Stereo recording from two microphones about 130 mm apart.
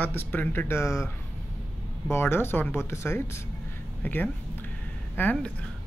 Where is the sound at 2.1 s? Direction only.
20° left (ahead or behind).